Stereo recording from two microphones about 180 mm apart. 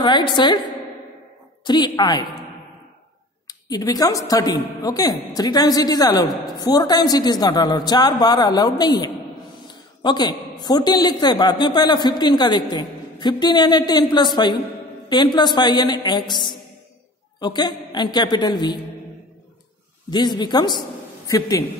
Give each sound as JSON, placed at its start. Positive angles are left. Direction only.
{"t": 0.0, "sound": "a man's voice", "side_deg": 25}
{"t": 1.6, "sound": "a man's voice", "side_deg": 25}
{"t": 3.4, "sound": "a man's voice", "side_deg": 20}
{"t": 20.1, "sound": "a man's voice", "side_deg": 25}